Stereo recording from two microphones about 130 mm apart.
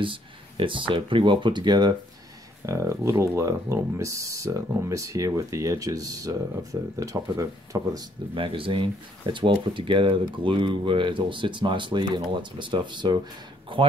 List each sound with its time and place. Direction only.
0.0 s speech: 40° right (ahead or behind)
8.4 s speech: 40° right (ahead or behind)